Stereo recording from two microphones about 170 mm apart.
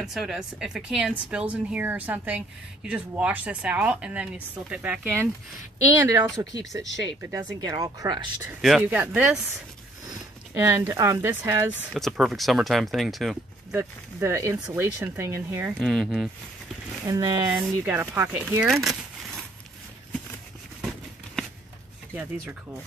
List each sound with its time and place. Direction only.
0.0 s speech: centre (ahead or behind)
5.9 s speech: 20° right (ahead or behind)
8.5 s speech: centre (ahead or behind); by 11.6 s 15° right (ahead or behind)
11.9 s speech: centre (ahead or behind)
14.2 s speech: 15° right (ahead or behind)
15.8 s speech: centre (ahead or behind)
17.0 s speech: 20° right (ahead or behind)
18.7 s a sound: centre (ahead or behind)